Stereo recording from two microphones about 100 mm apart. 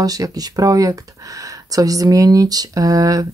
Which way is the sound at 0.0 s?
40° right (ahead or behind).